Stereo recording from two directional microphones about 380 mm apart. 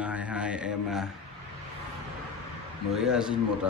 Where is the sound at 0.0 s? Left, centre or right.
Centre.